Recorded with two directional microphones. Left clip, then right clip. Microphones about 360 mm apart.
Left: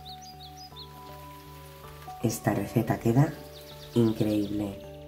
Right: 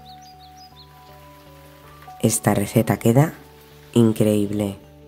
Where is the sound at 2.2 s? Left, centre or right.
Right.